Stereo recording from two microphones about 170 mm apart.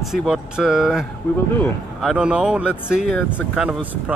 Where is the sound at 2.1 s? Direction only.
5° right (ahead or behind).